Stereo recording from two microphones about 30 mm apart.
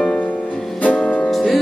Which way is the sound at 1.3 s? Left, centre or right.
Centre.